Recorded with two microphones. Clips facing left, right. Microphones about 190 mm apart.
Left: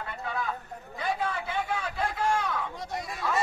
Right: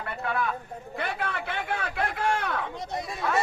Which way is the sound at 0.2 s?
65° right (ahead or behind).